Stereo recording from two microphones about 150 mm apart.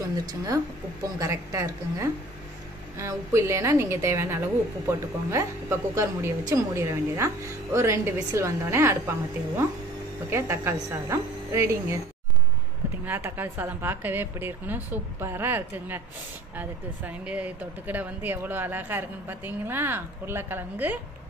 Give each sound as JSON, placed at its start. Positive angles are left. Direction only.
{"t": 0.3, "sound": "a woman's voice", "side_deg": -25}
{"t": 10.3, "sound": "a woman's voice", "side_deg": -15}
{"t": 13.0, "sound": "speech", "side_deg": -15}